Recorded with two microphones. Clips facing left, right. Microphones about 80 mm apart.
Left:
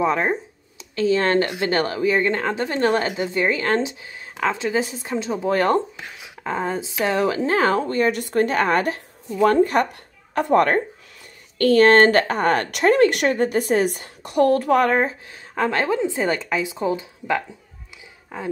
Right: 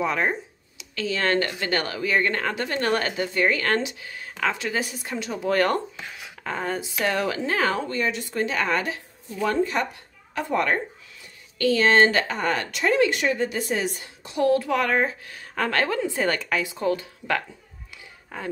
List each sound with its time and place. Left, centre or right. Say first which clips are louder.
0.0 s a woman's voice: left 4 dB; left
8.1 s speech: left 6 dB; left